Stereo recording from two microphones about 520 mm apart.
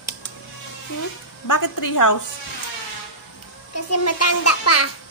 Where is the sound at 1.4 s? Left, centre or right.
Left.